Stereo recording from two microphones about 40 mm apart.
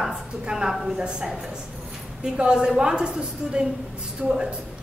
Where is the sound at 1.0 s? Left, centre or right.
Right.